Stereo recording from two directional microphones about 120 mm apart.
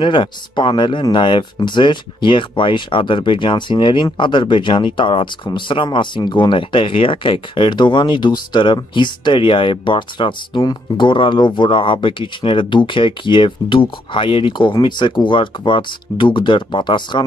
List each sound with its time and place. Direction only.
0.0 s speech: 45° left (ahead or behind)